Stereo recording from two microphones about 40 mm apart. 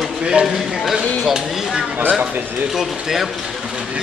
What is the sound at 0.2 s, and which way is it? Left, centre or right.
Speech, centre.